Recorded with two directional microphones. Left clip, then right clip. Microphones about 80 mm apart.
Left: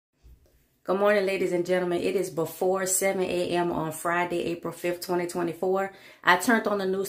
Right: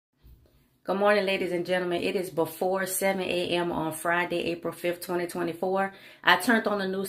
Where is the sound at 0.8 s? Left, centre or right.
Left.